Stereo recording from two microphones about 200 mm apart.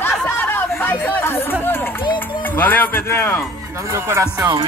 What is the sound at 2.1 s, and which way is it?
Speech, 10° left (ahead or behind).